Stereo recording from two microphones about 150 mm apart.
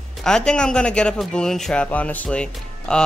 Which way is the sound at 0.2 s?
5° left (ahead or behind).